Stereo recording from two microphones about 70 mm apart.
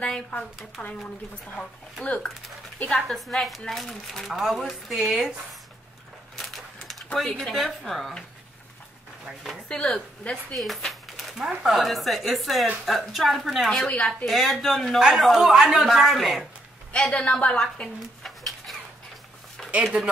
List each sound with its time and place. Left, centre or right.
0.0 s speech: centre
2.9 s a woman's voice: centre
6.3 s crushing: centre
7.2 s a woman's voice: centre
9.2 s a woman's voice: centre
9.7 s a woman's voice: centre
16.9 s speech: centre
18.2 s a sound: centre
19.7 s speech: centre